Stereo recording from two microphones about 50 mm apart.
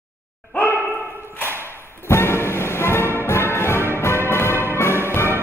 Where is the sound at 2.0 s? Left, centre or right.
Left.